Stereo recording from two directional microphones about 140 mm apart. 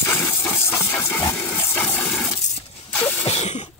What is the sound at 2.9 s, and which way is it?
Sneeze, 15° left (ahead or behind).